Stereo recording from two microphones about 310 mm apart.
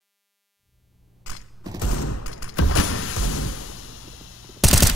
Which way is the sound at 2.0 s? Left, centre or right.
Left.